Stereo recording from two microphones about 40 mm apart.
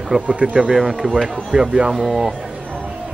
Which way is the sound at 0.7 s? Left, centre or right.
Centre.